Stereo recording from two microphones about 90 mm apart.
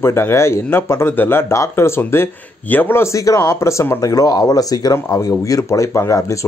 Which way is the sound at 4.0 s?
40° left (ahead or behind).